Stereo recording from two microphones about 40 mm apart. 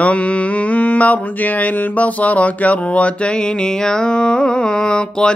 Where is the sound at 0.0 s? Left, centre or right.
Left.